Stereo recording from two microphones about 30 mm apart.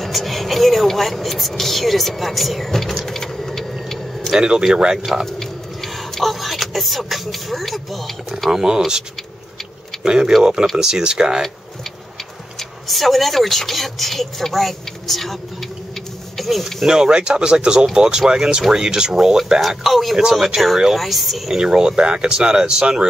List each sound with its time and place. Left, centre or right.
0.0 s speech: centre
3.1 s vehicle: centre
4.3 s speech: right
5.2 s speech: centre
8.5 s speech: centre
10.0 s speech: right
12.5 s speech: centre
16.3 s speech: centre
16.8 s speech: centre
17.1 s speech: right
19.1 s speech: centre
19.8 s speech: centre
21.5 s speech: right